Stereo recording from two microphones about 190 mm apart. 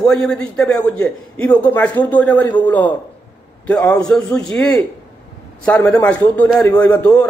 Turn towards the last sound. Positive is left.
turn(degrees=5)  # may be behind; listen again after turning